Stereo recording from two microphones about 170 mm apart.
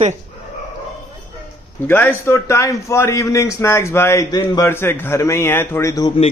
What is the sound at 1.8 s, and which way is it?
A man's voice, 10° left (ahead or behind).